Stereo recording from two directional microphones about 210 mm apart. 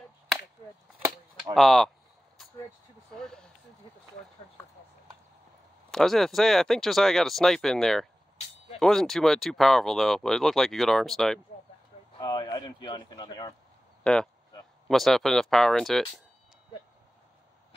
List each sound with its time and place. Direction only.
1.5 s speech: centre (ahead or behind)
3.2 s speech: centre (ahead or behind)
4.6 s speech: 10° left (ahead or behind)
5.9 s speech: centre (ahead or behind)
12.2 s speech: 20° left (ahead or behind)
14.0 s speech: 5° left (ahead or behind)